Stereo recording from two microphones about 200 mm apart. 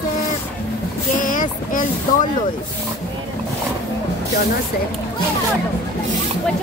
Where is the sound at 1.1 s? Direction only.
40° left (ahead or behind).